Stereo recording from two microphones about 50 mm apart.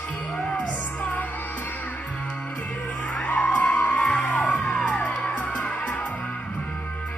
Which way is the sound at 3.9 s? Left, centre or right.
Left.